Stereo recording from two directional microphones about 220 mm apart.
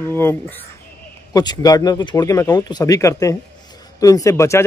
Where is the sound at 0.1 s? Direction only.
10° left (ahead or behind).